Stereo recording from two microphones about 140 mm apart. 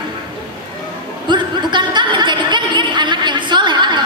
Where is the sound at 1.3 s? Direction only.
35° right (ahead or behind).